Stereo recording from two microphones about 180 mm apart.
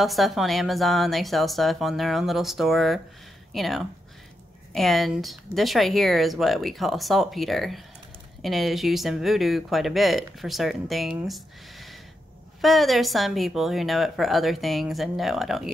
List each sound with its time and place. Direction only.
0.0 s speech: centre (ahead or behind)